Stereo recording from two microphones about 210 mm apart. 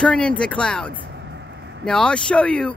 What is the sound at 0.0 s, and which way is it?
Speech, 5° left (ahead or behind).